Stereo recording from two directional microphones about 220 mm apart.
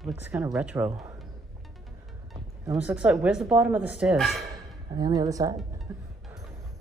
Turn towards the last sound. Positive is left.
turn(degrees=-15)  # may be behind; listen again after turning